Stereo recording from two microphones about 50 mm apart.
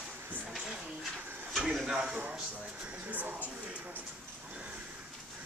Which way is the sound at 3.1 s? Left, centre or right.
Right.